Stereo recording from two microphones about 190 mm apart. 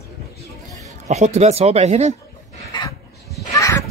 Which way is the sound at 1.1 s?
35° right (ahead or behind).